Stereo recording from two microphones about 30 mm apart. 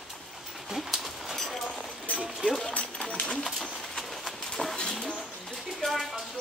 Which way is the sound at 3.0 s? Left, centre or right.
Left.